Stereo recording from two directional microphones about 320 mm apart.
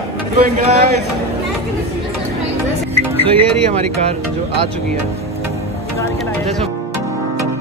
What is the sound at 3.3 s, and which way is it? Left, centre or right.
Speech, centre.